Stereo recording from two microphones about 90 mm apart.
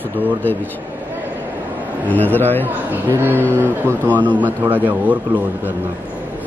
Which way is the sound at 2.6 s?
20° right (ahead or behind).